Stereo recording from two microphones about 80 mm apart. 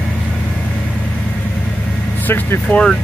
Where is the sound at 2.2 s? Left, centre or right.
Left.